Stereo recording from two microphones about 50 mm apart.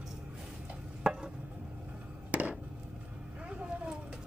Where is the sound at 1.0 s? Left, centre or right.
Centre.